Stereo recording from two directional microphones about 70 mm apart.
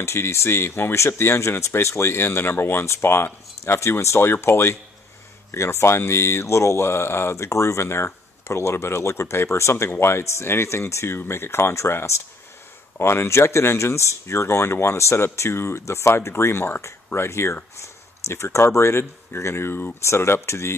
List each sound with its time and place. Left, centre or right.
0.0 s speech: left